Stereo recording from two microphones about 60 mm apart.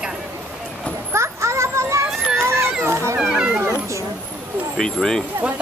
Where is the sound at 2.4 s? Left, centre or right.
Right.